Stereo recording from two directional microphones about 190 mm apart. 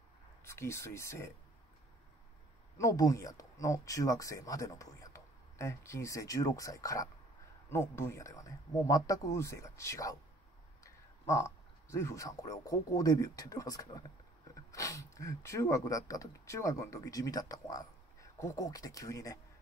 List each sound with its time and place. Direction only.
0.5 s speech: 15° left (ahead or behind)
2.8 s speech: 15° left (ahead or behind)